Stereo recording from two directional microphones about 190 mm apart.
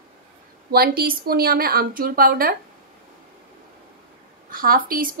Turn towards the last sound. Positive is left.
turn(degrees=-50)  # may be behind; listen again after turning